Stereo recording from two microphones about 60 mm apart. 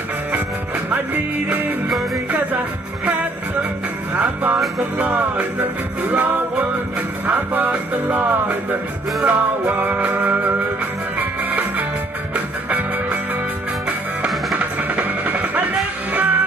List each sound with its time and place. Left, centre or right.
0.8 s music: right
4.1 s music: right
7.2 s music: right
7.7 s music: centre
12.4 s music: right